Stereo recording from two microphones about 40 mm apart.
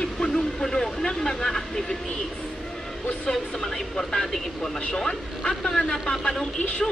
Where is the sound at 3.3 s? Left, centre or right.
Centre.